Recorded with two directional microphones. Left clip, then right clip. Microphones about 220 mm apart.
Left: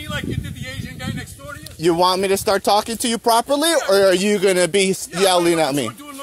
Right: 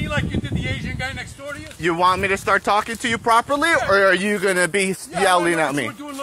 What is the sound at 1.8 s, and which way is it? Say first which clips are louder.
Speech: left 1 dB; 35° left (ahead or behind).